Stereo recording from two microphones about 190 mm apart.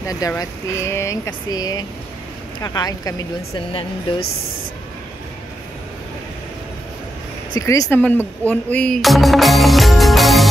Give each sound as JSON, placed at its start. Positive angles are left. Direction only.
{"t": 0.0, "sound": "speech", "side_deg": 20}
{"t": 7.5, "sound": "speech", "side_deg": 20}